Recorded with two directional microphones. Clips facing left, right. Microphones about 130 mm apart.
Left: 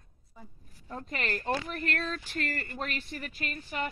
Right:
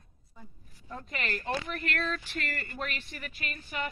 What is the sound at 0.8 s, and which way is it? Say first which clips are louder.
Speech: left 2 dB; 35° left (ahead or behind).